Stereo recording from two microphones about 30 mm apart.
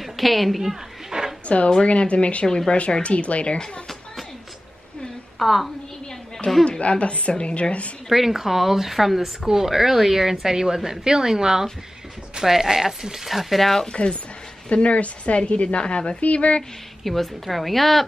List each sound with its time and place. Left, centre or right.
0.0 s a woman's voice: centre
1.1 s a sound: right
1.8 s speech: left
2.4 s speech: centre
2.7 s speech: left
5.4 s a woman's voice: centre
6.8 s speech: left
8.1 s speech: centre
14.7 s speech: left
16.2 s speech: left
17.0 s a woman's voice: centre